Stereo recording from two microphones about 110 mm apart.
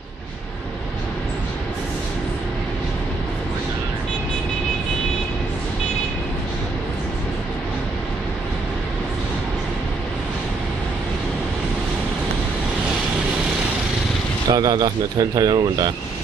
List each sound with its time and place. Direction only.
14.5 s speech: 40° right (ahead or behind)